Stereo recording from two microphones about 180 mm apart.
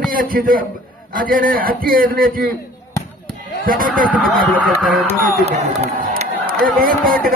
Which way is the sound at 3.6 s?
50° right (ahead or behind).